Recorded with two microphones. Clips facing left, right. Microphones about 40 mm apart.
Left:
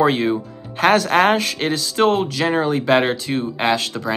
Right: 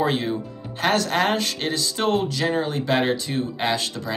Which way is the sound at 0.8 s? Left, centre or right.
Left.